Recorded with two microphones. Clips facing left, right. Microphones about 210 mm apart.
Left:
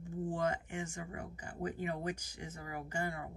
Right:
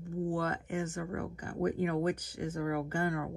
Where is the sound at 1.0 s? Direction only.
60° right (ahead or behind).